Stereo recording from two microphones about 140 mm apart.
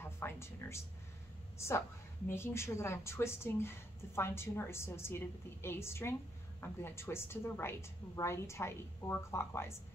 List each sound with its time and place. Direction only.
0.0 s a woman's voice: 20° left (ahead or behind)